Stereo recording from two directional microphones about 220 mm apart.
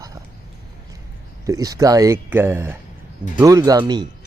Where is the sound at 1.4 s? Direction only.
15° right (ahead or behind).